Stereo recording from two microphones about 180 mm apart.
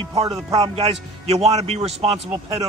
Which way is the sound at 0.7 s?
35° right (ahead or behind).